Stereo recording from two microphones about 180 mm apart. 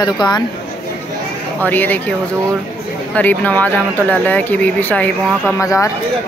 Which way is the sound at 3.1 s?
10° left (ahead or behind).